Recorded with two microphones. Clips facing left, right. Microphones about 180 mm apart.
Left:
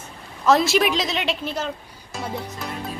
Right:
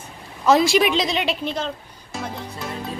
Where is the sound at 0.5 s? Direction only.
Centre (ahead or behind).